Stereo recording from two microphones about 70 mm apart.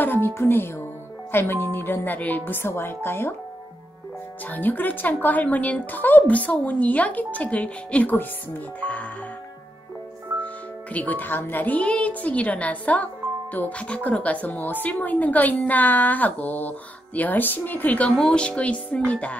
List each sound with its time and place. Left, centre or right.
0.0 s music: left
1.3 s speech: left
4.5 s speech: left
10.4 s speech: left